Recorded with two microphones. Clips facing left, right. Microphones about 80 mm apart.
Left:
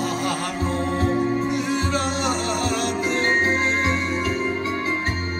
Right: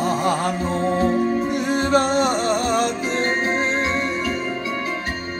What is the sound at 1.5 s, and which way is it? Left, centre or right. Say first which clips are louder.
Music: right 4 dB; right.